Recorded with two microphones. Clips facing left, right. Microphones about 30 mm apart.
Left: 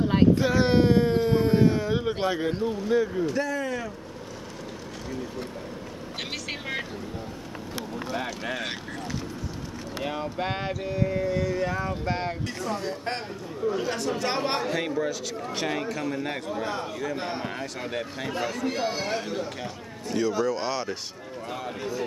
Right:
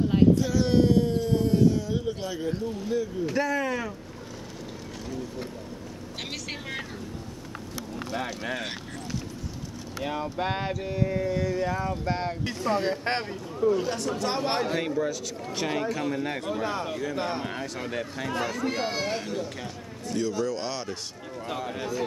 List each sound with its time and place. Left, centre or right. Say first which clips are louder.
0.1 s a sound: left 1 dB; left
3.3 s speech: right 1 dB; centre
6.3 s vehicle: left 3 dB; centre
8.1 s speech: even; centre
10.0 s speech: right 1 dB; centre
12.4 s speech: right 4 dB; right
13.7 s speech: right 2 dB; centre
16.6 s speech: right 2 dB; centre
17.1 s speech: right 1 dB; centre
18.9 s speech: even; centre